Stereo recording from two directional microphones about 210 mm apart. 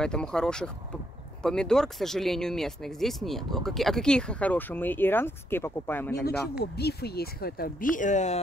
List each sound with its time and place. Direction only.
0.0 s speech: 5° left (ahead or behind)
6.6 s speech: 50° left (ahead or behind); by 8.4 s 35° left (ahead or behind)